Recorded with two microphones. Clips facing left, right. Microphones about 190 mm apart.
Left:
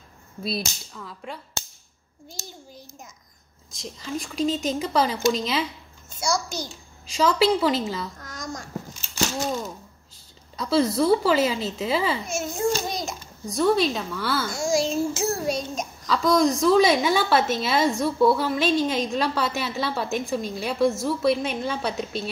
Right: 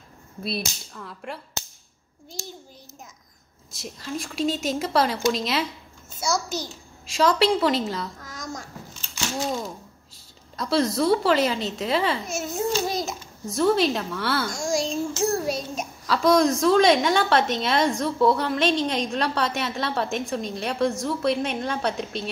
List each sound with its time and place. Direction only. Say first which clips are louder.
0.4 s a woman's voice: left 1 dB; centre (ahead or behind)
3.7 s a woman's voice: left 1 dB; 5° right (ahead or behind)
10.5 s a woman's voice: left 1 dB; centre (ahead or behind)